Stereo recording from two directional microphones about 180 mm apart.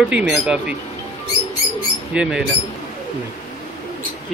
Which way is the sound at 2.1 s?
5° right (ahead or behind).